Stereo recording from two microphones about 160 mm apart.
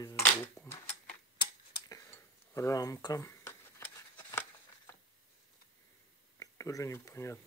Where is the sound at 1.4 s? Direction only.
20° left (ahead or behind).